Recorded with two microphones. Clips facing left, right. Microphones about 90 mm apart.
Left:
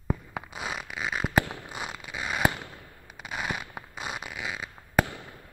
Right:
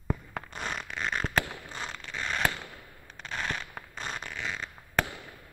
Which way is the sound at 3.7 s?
10° left (ahead or behind).